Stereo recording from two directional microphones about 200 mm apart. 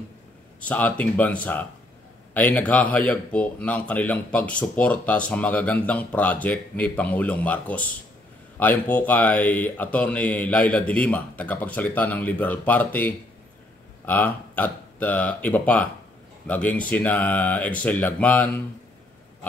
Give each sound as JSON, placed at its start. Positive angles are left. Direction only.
{"t": 0.6, "sound": "speech", "side_deg": 5}